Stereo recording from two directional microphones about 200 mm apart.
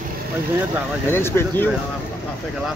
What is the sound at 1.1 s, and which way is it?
Speech, 10° left (ahead or behind).